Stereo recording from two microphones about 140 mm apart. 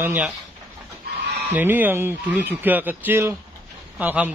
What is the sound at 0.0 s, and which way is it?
Speech, 15° right (ahead or behind).